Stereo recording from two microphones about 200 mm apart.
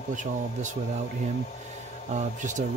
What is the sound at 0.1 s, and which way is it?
Speech, 40° right (ahead or behind).